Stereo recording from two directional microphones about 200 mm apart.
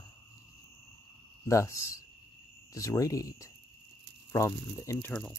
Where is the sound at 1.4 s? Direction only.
15° left (ahead or behind).